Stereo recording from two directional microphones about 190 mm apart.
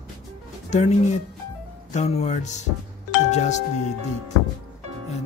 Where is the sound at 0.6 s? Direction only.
35° left (ahead or behind).